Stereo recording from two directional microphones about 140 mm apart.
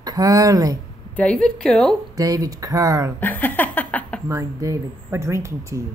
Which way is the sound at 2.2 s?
25° right (ahead or behind).